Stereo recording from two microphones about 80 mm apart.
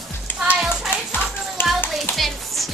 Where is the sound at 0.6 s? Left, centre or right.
Centre.